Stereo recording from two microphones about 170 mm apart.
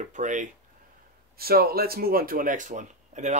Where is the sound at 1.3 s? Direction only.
65° right (ahead or behind).